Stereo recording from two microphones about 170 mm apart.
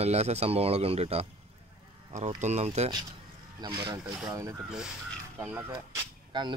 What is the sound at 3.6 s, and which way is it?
Speech, 25° right (ahead or behind).